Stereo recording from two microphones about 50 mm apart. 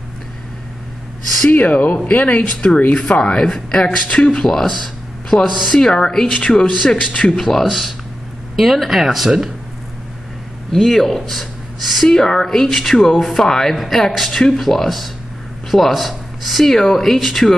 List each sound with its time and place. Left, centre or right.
1.5 s speech: left
7.3 s speech: centre
10.7 s speech: centre
12.1 s speech: centre